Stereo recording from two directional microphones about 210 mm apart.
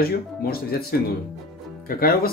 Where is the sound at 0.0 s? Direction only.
45° left (ahead or behind).